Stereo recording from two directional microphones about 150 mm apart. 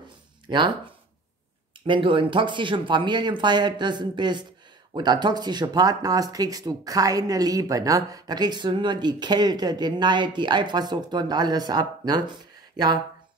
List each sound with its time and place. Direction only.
0.5 s speech: 30° right (ahead or behind)
1.9 s speech: 35° right (ahead or behind)